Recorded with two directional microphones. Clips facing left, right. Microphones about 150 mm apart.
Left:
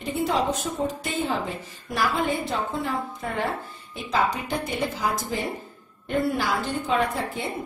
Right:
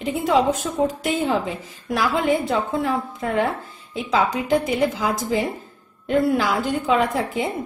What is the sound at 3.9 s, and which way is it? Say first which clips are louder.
A woman's voice: right 4 dB; 90° right.